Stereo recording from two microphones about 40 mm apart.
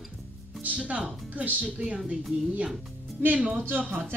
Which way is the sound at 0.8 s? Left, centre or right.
Right.